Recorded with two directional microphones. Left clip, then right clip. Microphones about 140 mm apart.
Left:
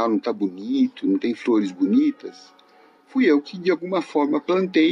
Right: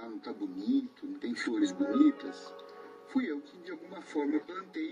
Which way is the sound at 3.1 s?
35° left (ahead or behind).